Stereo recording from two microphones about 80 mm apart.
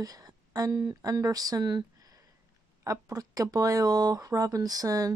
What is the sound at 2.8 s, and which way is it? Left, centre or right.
Speech, right.